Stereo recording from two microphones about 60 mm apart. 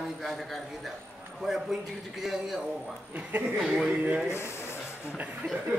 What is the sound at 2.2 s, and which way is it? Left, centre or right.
Speech, centre.